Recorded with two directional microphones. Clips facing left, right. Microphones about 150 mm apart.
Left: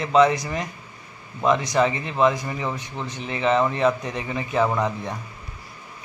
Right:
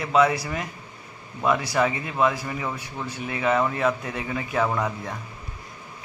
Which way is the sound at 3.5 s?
20° left (ahead or behind).